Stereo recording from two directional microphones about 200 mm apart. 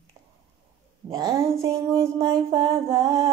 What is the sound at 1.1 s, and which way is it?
Mantra, 15° right (ahead or behind).